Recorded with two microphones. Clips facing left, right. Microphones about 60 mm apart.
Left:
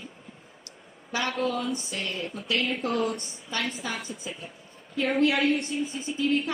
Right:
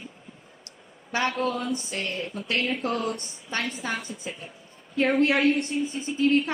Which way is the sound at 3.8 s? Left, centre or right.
Right.